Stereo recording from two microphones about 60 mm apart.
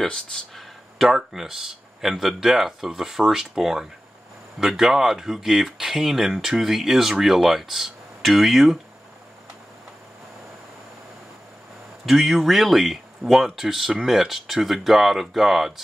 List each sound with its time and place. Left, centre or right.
0.0 s speech: centre
0.6 s speech: centre
12.1 s speech: centre